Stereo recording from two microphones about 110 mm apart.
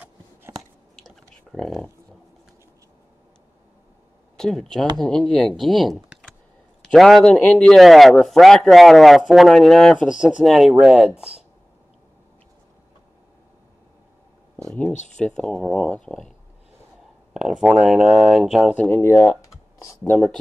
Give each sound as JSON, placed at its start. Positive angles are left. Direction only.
{"t": 1.5, "sound": "speech", "side_deg": 5}
{"t": 4.4, "sound": "speech", "side_deg": 5}
{"t": 5.9, "sound": "typing", "side_deg": -10}
{"t": 6.8, "sound": "a man's voice", "side_deg": 5}
{"t": 14.6, "sound": "speech", "side_deg": 10}
{"t": 17.3, "sound": "a sound", "side_deg": -5}
{"t": 17.7, "sound": "speech", "side_deg": -5}
{"t": 18.8, "sound": "speech", "side_deg": 20}